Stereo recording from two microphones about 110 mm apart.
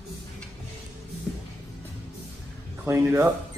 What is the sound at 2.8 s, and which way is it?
Speech, 25° right (ahead or behind).